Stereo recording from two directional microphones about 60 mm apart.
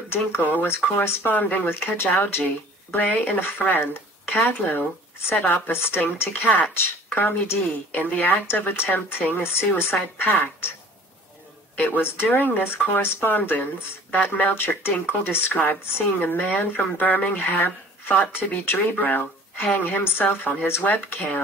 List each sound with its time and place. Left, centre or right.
0.1 s speech: left
3.0 s speech: left
11.7 s speech: left